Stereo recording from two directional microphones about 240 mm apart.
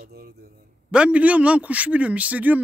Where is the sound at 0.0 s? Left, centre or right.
Right.